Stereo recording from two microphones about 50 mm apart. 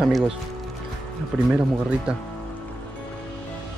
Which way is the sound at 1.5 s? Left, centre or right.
Right.